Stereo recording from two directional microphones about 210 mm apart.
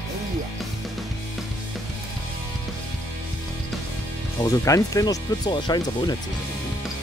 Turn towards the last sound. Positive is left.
turn(degrees=20)  # may be behind; listen again after turning